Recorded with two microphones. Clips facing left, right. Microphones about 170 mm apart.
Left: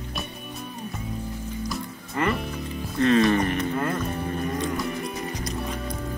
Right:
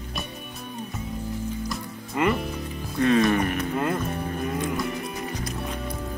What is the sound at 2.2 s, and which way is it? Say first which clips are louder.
Music: right 2 dB; centre (ahead or behind).